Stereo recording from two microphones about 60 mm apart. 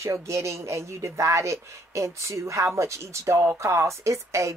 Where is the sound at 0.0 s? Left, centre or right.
Right.